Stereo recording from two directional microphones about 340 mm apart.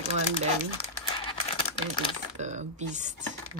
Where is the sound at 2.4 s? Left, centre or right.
Centre.